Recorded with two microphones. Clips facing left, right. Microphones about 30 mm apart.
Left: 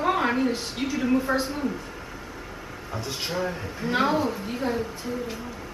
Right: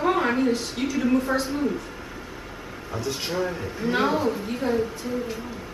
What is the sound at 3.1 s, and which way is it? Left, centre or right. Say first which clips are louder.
A woman's voice: right 2 dB; centre.